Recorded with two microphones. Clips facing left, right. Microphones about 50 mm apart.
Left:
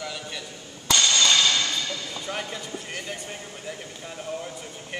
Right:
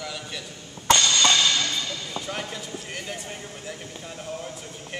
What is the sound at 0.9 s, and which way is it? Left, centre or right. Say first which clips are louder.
Music: right 3 dB; right.